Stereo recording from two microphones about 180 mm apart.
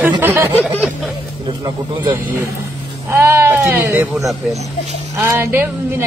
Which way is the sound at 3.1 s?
15° right (ahead or behind).